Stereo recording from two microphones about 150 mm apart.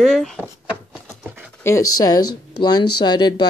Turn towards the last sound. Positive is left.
turn(degrees=30)  # may be behind; listen again after turning